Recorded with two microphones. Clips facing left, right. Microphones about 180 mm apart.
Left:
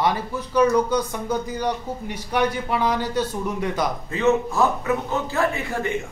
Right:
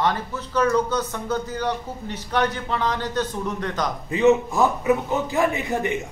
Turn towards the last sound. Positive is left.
turn(degrees=-20)  # may be behind; listen again after turning